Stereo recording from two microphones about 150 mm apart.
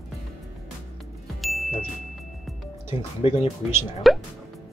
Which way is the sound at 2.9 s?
40° left (ahead or behind).